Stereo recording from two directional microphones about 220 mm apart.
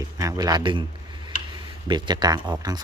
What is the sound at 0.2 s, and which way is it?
Speech, 15° right (ahead or behind).